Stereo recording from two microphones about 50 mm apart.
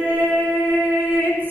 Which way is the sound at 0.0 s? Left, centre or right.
Right.